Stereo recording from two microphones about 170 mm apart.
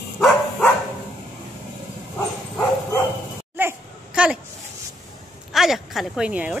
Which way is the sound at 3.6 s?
10° right (ahead or behind).